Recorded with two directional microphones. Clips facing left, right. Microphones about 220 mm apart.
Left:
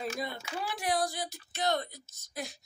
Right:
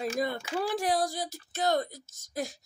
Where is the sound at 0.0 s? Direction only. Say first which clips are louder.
Right 6 dB; 50° right (ahead or behind).